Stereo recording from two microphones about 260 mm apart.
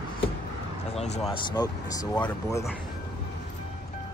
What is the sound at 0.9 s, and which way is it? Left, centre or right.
Speech, left.